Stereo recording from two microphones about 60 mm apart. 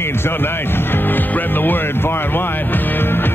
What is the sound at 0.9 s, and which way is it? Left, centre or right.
Speech, left.